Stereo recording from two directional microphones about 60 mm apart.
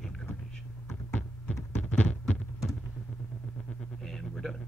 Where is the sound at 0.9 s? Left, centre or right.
Left.